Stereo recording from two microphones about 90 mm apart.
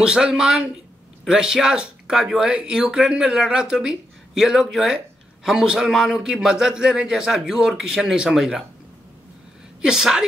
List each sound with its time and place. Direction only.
0.0 s speech: 10° right (ahead or behind)
9.8 s speech: 5° right (ahead or behind)